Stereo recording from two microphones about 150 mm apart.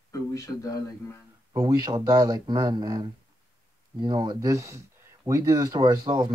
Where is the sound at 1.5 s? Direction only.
25° right (ahead or behind).